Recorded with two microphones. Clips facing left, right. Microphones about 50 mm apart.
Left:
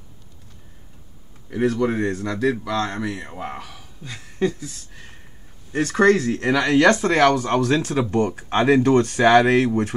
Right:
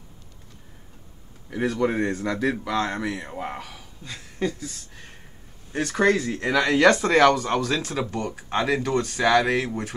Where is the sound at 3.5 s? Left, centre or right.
Centre.